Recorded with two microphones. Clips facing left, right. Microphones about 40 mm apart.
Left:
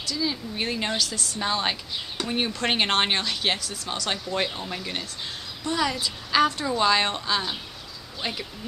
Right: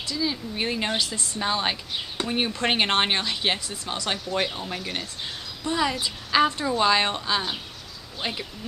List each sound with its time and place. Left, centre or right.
0.2 s speech: centre
0.9 s speech: right
1.4 s speech: centre
3.5 s speech: right
4.1 s speech: centre
5.7 s speech: centre